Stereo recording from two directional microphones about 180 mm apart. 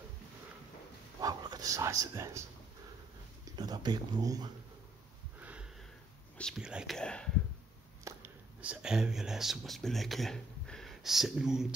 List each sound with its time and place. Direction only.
1.2 s speech: 20° right (ahead or behind)
3.4 s speech: 20° right (ahead or behind)
5.4 s sniff: 5° right (ahead or behind)
6.3 s speech: centre (ahead or behind)
8.0 s speech: 10° right (ahead or behind)